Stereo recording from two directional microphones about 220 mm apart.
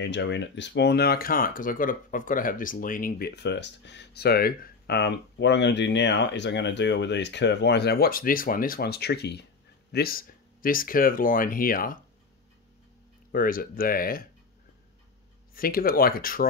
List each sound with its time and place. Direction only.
0.0 s speech: 50° left (ahead or behind)
13.3 s speech: 40° left (ahead or behind)
15.5 s speech: 40° left (ahead or behind)